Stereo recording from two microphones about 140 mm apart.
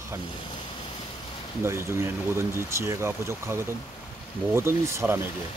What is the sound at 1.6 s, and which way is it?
Speech, 20° right (ahead or behind).